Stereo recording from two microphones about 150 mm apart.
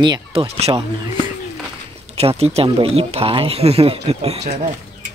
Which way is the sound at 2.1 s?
45° right (ahead or behind).